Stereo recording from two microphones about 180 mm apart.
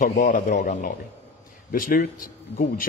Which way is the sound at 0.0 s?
45° left (ahead or behind).